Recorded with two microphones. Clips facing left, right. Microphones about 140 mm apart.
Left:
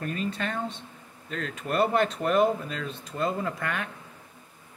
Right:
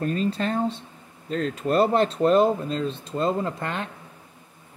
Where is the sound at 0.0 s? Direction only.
35° right (ahead or behind).